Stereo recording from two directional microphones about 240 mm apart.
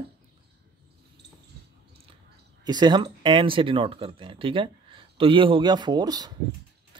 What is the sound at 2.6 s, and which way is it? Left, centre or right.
Speech, centre.